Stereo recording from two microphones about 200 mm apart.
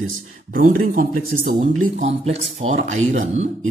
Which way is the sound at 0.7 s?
40° right (ahead or behind).